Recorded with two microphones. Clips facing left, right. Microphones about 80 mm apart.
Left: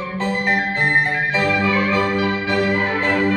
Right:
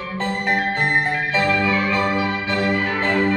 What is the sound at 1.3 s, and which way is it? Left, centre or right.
Music, centre.